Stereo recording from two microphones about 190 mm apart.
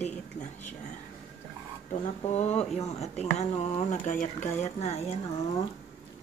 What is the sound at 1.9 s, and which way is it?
Speech, 35° left (ahead or behind).